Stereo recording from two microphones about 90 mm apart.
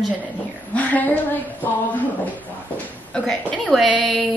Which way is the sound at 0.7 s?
15° left (ahead or behind).